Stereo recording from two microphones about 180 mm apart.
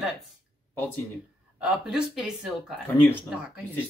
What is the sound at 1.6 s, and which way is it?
Speech, 5° right (ahead or behind).